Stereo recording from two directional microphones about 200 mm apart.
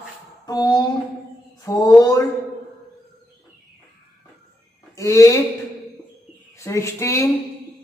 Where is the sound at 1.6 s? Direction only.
15° left (ahead or behind).